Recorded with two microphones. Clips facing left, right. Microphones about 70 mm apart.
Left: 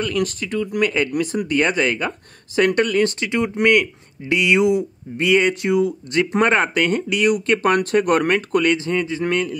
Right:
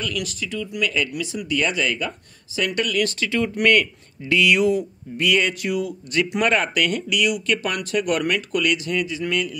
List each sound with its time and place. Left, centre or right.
0.0 s speech: left